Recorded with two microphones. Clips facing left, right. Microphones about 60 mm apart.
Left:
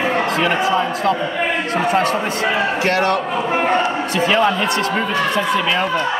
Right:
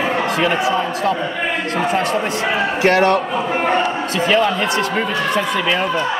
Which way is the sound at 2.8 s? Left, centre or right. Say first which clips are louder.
Right 6 dB; right.